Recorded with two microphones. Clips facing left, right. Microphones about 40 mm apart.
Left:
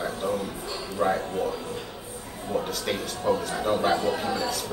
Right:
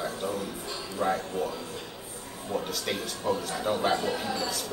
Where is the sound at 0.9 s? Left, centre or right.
Centre.